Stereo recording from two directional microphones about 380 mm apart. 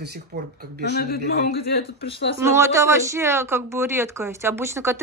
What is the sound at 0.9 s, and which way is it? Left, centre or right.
A man's voice, left.